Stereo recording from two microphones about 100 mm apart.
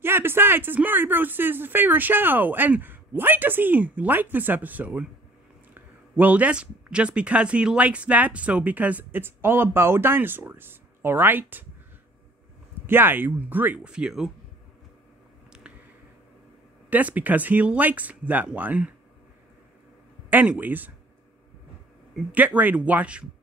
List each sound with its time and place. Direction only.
0.0 s speech: 25° right (ahead or behind)
12.8 s speech: 20° right (ahead or behind); by 14.3 s 5° right (ahead or behind)
16.9 s speech: 15° right (ahead or behind)
20.2 s speech: 15° right (ahead or behind)
22.1 s speech: 15° right (ahead or behind)